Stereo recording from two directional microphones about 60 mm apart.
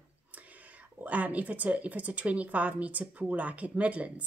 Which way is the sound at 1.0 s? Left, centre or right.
Right.